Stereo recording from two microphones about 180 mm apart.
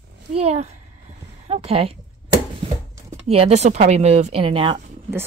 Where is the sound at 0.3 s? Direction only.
35° right (ahead or behind).